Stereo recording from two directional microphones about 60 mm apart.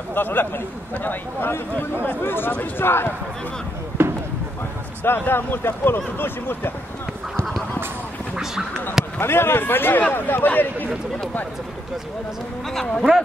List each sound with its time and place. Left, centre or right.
0.1 s a man's voice: left
4.0 s basketball bounce: right
5.0 s speech: left
9.2 s speech: left
12.7 s speech: centre